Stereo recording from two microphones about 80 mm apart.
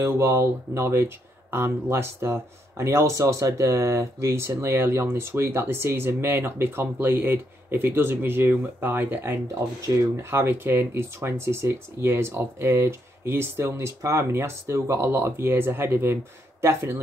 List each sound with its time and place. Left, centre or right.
0.0 s speech: right